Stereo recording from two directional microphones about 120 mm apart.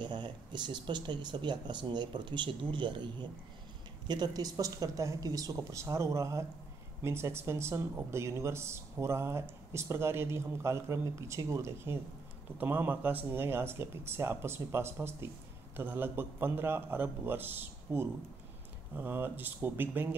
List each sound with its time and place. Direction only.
0.0 s a man's voice: 40° right (ahead or behind); by 20.2 s 15° right (ahead or behind)